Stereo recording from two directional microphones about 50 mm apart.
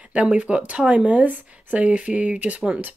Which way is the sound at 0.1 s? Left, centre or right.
Right.